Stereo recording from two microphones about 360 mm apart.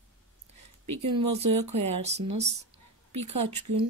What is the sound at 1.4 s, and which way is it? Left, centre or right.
Speech, centre.